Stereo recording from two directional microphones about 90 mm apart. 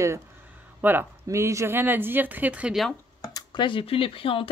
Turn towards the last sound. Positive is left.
turn(degrees=85)